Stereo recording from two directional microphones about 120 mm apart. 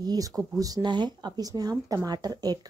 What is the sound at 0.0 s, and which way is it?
Speech, 35° right (ahead or behind).